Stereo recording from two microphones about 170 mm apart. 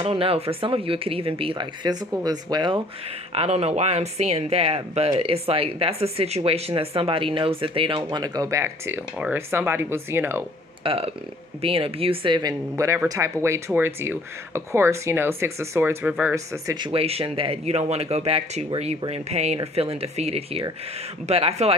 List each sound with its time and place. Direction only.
0.0 s speech: 35° right (ahead or behind)
3.3 s speech: 35° right (ahead or behind); by 10.4 s 15° right (ahead or behind)
10.8 s a woman's voice: 35° right (ahead or behind)
16.9 s speech: 35° right (ahead or behind)